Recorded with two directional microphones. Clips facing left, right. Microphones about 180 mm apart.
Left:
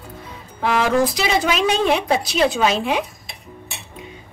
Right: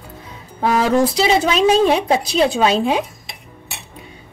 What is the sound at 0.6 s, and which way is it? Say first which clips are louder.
A woman's voice: right 2 dB; 30° right (ahead or behind).